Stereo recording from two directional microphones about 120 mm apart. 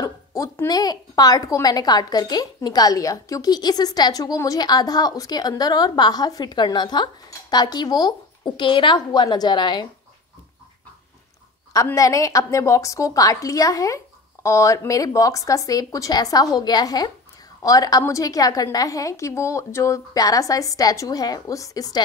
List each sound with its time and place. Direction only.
0.0 s a woman's voice: 25° left (ahead or behind)
11.7 s a woman's voice: 30° left (ahead or behind)